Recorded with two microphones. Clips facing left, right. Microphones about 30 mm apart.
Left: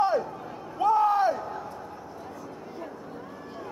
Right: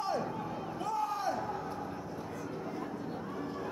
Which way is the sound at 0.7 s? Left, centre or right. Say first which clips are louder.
Left 14 dB; left.